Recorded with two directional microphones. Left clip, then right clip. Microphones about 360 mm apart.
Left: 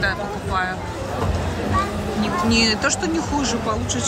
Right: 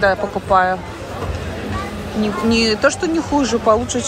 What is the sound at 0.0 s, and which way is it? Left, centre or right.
Speech, centre.